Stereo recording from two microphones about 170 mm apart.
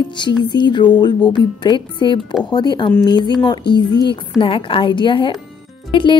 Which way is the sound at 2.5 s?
25° left (ahead or behind).